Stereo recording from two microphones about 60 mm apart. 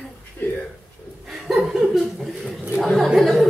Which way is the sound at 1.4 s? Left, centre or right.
Centre.